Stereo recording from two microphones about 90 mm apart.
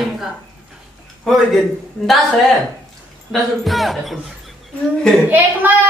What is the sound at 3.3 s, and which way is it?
Speech, centre (ahead or behind).